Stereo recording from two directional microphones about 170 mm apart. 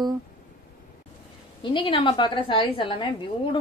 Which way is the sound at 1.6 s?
30° left (ahead or behind).